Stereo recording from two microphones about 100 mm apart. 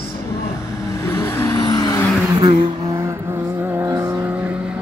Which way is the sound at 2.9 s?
25° right (ahead or behind).